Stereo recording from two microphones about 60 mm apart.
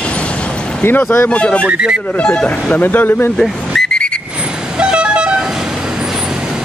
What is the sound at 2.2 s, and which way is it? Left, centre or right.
Speech, centre.